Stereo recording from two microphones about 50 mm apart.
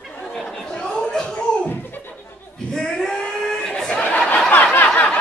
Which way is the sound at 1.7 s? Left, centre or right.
Left.